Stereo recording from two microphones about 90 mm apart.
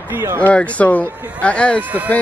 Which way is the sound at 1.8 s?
15° right (ahead or behind).